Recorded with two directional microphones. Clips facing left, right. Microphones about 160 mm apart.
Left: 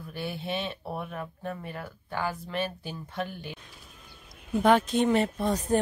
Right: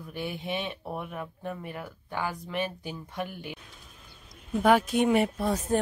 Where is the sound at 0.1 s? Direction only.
15° right (ahead or behind).